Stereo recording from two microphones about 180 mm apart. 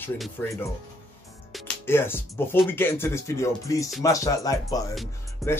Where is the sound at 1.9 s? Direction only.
15° left (ahead or behind).